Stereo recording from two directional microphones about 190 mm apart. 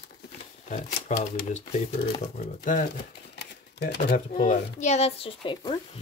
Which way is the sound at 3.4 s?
60° left (ahead or behind).